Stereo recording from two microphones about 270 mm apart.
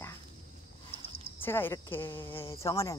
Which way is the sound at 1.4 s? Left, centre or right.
Centre.